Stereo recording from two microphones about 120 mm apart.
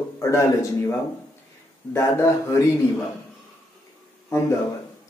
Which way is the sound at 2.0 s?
25° left (ahead or behind).